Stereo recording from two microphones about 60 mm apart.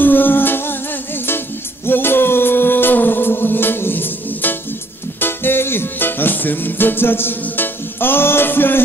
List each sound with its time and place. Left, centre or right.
0.0 s music: left